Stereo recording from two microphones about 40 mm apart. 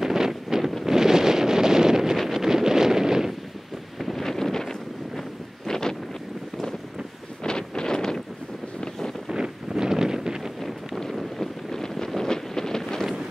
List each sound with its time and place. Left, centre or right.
0.0 s wind noise: centre
4.2 s wind noise: centre
5.7 s wind: centre
7.4 s wind: centre
9.3 s wind noise: centre
11.1 s wind noise: centre